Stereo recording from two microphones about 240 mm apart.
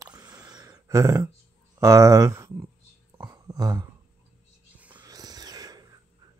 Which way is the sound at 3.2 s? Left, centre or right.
Centre.